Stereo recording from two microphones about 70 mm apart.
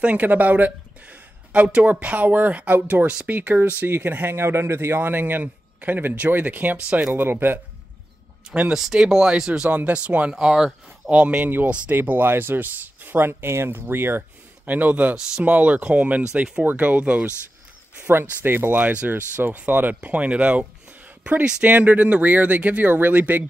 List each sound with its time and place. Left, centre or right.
0.0 s a man's voice: right
8.7 s speech: centre
9.7 s a man's voice: right; by 10.7 s centre
11.1 s a man's voice: centre